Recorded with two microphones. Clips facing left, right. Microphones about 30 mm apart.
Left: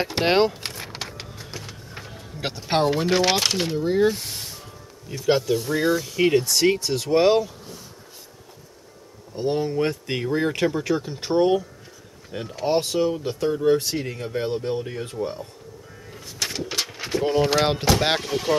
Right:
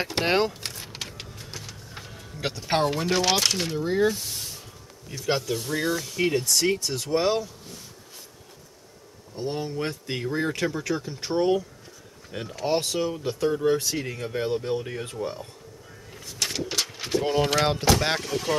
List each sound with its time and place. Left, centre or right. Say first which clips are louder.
0.2 s speech: left 4 dB; left
0.7 s a sound: left 3 dB; left
1.5 s printer: left 3 dB; centre
2.1 s speech: left 1 dB; centre
2.9 s speech: left 3 dB; left; by 4.0 s centre
4.0 s a sound: left 3 dB; left
5.1 s speech: left 6 dB; centre
7.1 s speech: left 6 dB; left
9.4 s speech: left 6 dB; left
9.8 s speech: left 6 dB; centre
12.3 s speech: left 2 dB; centre
16.1 s a sound: left 1 dB; centre
17.2 s speech: left 4 dB; centre
17.6 s speech: left 2 dB; left